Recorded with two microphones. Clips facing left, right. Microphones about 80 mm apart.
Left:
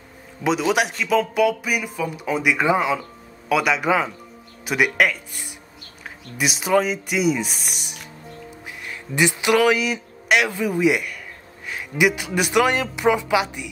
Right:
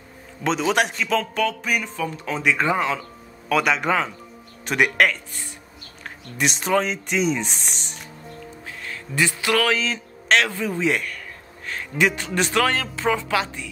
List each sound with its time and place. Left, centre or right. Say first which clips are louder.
0.4 s speech: left 1 dB; centre